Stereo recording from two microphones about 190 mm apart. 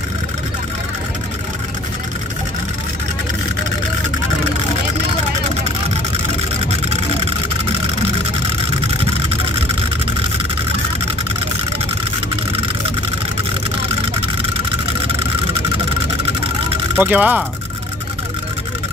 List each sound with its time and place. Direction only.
16.9 s speech: 10° right (ahead or behind)